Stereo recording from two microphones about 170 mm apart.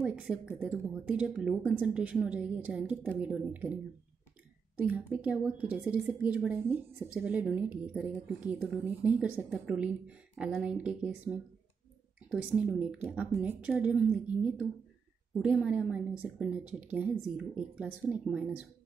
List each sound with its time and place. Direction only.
0.0 s a woman's voice: centre (ahead or behind)
4.7 s a woman's voice: 10° right (ahead or behind)